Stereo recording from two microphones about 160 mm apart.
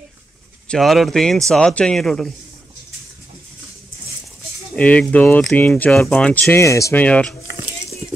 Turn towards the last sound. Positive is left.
turn(degrees=5)  # may be behind; listen again after turning